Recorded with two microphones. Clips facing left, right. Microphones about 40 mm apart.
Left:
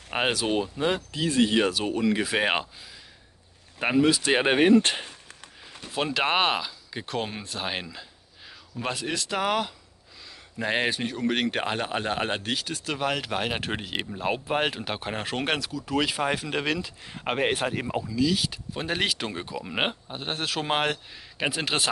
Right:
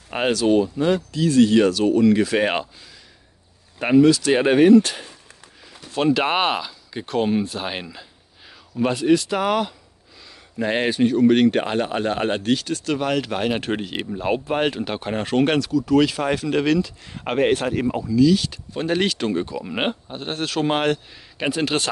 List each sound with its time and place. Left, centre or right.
0.1 s speech: centre
4.0 s speech: centre
4.8 s speech: left
5.9 s speech: centre